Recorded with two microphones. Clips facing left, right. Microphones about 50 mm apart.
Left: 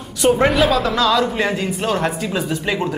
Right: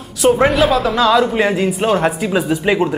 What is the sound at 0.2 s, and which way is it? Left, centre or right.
Speech, centre.